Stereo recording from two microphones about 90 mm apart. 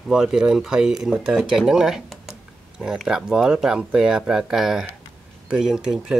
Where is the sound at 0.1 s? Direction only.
5° right (ahead or behind).